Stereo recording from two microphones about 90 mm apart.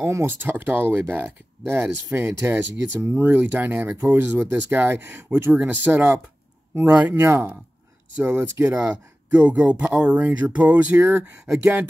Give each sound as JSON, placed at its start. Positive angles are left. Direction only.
{"t": 0.0, "sound": "speech", "side_deg": -30}
{"t": 8.7, "sound": "speech", "side_deg": -10}
{"t": 11.4, "sound": "speech", "side_deg": -5}